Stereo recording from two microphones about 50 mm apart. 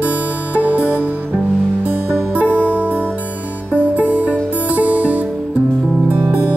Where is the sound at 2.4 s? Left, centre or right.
Left.